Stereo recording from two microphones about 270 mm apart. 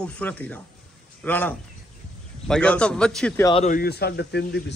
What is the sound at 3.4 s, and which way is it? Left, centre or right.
Speech, centre.